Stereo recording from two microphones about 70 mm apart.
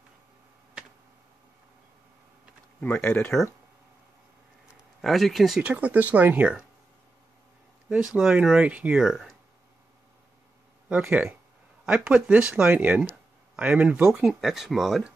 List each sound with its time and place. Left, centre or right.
2.8 s speech: left
5.0 s speech: centre
5.6 s speech: centre
7.9 s speech: centre
10.9 s speech: centre
14.2 s speech: centre